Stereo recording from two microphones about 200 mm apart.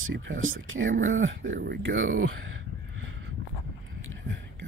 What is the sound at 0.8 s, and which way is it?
Speech, 40° right (ahead or behind).